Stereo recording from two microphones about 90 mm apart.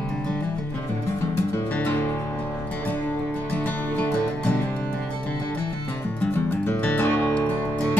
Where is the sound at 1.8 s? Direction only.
25° left (ahead or behind).